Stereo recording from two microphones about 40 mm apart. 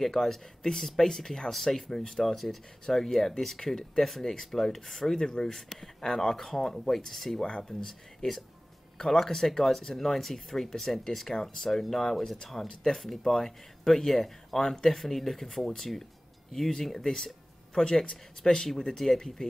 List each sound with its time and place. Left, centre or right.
0.0 s speech: centre
8.9 s speech: centre
18.8 s speech: centre